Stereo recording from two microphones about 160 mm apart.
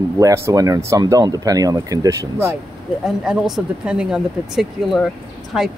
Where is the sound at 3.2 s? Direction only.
5° right (ahead or behind).